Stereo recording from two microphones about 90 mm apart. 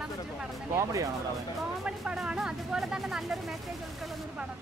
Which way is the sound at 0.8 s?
40° right (ahead or behind).